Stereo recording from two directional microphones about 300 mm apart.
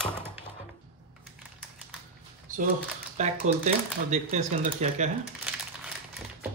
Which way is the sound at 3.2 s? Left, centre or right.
Right.